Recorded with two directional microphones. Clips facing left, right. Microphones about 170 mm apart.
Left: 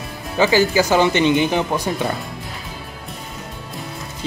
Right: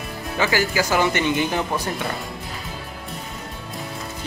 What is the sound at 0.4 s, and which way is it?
Speech, 25° left (ahead or behind).